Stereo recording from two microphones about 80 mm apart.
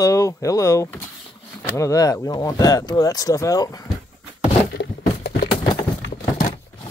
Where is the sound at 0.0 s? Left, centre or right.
Left.